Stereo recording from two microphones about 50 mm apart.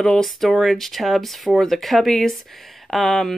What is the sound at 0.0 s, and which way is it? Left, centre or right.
Speech, centre.